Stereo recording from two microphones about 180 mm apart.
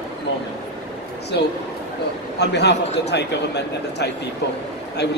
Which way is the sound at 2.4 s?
70° left (ahead or behind).